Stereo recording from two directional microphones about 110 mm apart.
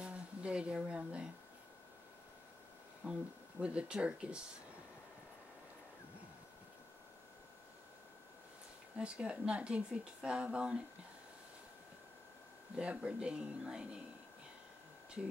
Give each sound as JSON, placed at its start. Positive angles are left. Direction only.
{"t": 0.0, "sound": "a sound", "side_deg": -10}
{"t": 3.0, "sound": "speech", "side_deg": -15}
{"t": 8.9, "sound": "speech", "side_deg": -10}
{"t": 12.7, "sound": "speech", "side_deg": -10}